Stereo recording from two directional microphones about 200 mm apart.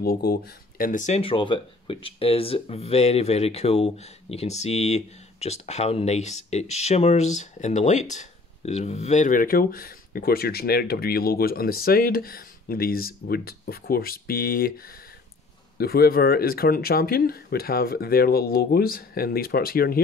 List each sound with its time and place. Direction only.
0.0 s speech: 50° left (ahead or behind)